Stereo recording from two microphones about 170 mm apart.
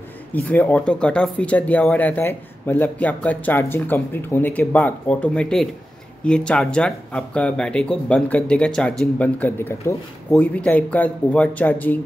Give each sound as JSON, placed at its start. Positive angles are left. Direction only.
{"t": 0.3, "sound": "speech", "side_deg": 10}